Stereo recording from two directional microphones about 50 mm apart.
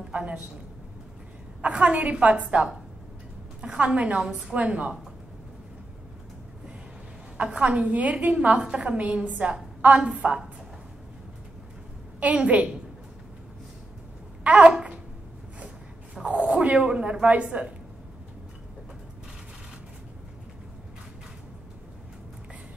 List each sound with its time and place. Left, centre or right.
0.1 s a woman's voice: right
1.6 s a woman's voice: right
4.1 s a woman's voice: centre
4.6 s a woman's voice: right
7.3 s a woman's voice: right
12.2 s a woman's voice: right
14.4 s babbling: right
16.2 s a sound: centre
16.5 s a woman's voice: right